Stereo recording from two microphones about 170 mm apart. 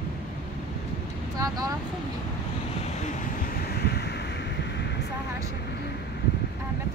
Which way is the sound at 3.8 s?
70° left (ahead or behind).